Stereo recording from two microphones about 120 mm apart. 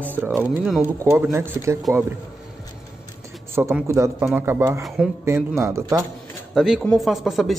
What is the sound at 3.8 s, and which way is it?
A man's voice, 25° right (ahead or behind).